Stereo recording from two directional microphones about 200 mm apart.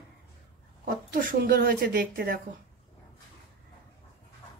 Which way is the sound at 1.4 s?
45° right (ahead or behind).